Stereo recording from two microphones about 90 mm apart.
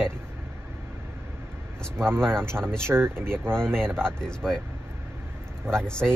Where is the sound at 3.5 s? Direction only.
5° left (ahead or behind).